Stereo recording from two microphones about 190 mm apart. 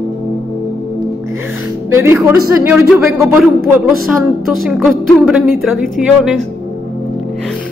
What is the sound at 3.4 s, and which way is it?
Speech, centre (ahead or behind).